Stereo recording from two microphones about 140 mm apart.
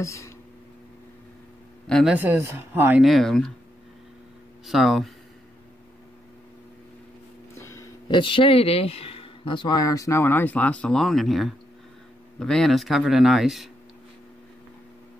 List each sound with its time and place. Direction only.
0.0 s speech: 20° left (ahead or behind)
1.9 s speech: 5° left (ahead or behind)
2.1 s speech: 15° right (ahead or behind)
3.0 s speech: centre (ahead or behind)
4.6 s speech: centre (ahead or behind)
7.5 s a sound: 20° left (ahead or behind)
8.1 s speech: 35° left (ahead or behind); by 13.7 s centre (ahead or behind)